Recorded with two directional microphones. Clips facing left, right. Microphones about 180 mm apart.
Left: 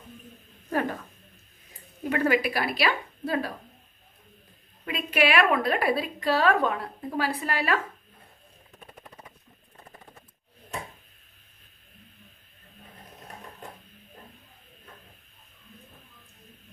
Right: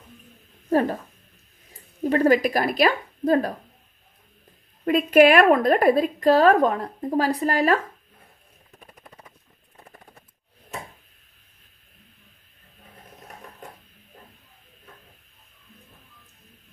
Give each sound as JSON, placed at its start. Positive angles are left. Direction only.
{"t": 0.7, "sound": "speech", "side_deg": -35}
{"t": 2.0, "sound": "a woman's voice", "side_deg": -35}
{"t": 4.8, "sound": "a woman's voice", "side_deg": -45}